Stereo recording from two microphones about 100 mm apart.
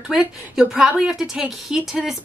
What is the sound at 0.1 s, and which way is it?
A woman's voice, 5° right (ahead or behind).